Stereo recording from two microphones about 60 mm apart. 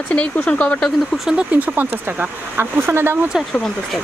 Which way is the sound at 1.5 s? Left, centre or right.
Right.